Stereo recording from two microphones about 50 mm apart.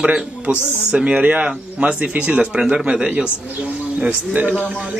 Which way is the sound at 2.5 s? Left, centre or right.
Centre.